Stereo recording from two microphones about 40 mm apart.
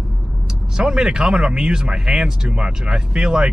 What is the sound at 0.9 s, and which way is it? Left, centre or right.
Speech, centre.